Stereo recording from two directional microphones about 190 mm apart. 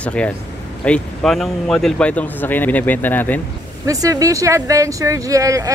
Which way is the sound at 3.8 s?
20° right (ahead or behind).